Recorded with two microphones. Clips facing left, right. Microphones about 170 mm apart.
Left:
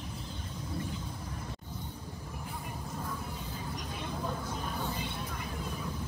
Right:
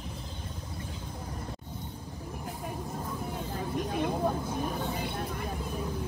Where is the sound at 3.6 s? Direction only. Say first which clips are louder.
Right 12 dB; 55° right (ahead or behind).